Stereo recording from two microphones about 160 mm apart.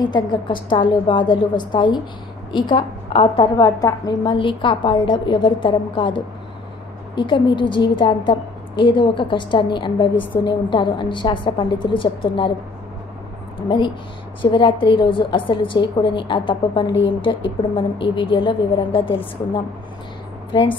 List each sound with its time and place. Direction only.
0.0 s a woman's voice: 25° left (ahead or behind)
3.6 s a woman's voice: 20° left (ahead or behind)
13.6 s a woman's voice: 30° left (ahead or behind)